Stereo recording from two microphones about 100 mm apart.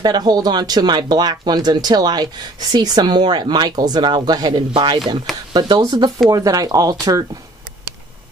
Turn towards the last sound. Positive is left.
turn(degrees=-40)  # may be behind; listen again after turning